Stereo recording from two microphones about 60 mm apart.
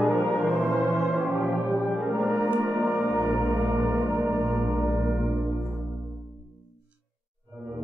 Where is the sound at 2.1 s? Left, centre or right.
Centre.